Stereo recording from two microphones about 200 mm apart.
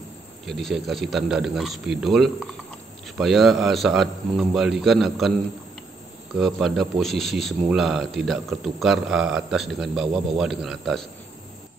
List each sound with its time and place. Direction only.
0.5 s a man's voice: centre (ahead or behind)
6.3 s a man's voice: centre (ahead or behind)